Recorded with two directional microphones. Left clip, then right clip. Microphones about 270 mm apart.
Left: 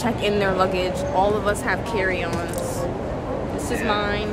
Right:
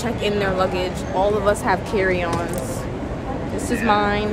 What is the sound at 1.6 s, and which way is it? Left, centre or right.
Speech, centre.